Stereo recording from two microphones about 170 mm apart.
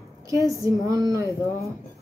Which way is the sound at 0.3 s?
20° right (ahead or behind).